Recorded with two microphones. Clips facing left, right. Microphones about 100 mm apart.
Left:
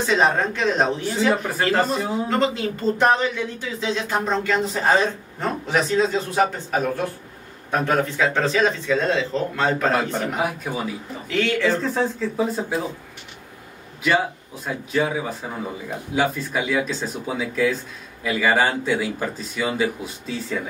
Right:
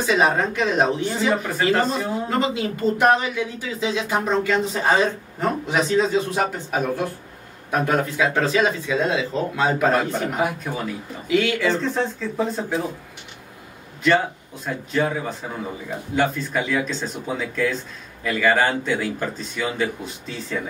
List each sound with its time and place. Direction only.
0.0 s speech: 5° right (ahead or behind)
2.2 s speech: 5° right (ahead or behind)
9.9 s speech: centre (ahead or behind)
11.2 s speech: 5° right (ahead or behind)
14.0 s speech: 5° left (ahead or behind)